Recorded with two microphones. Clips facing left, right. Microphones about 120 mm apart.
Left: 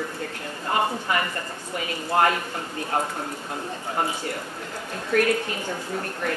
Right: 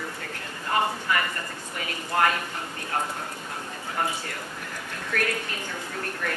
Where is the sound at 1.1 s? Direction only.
25° left (ahead or behind).